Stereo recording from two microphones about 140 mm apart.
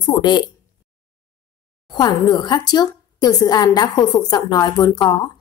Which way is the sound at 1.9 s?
30° left (ahead or behind).